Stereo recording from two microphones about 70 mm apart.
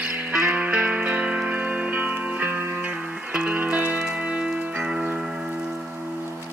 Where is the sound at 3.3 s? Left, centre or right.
Right.